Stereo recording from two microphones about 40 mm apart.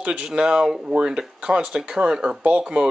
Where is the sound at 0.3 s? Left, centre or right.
Centre.